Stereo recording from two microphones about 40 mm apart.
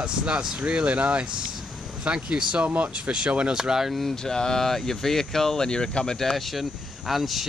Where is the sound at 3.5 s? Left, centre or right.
Centre.